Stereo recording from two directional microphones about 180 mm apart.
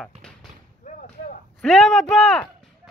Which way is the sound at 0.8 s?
45° left (ahead or behind).